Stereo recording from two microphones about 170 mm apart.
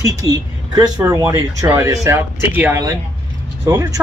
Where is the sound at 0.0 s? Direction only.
20° right (ahead or behind).